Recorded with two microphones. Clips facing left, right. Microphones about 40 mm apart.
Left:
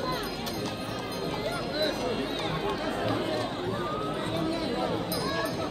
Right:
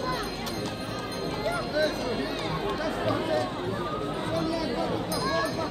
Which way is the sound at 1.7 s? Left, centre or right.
Left.